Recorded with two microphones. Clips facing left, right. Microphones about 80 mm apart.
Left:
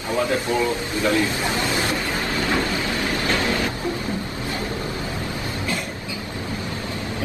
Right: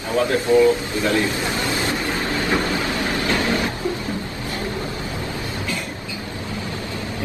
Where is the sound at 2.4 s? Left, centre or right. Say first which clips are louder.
Right 2 dB; right.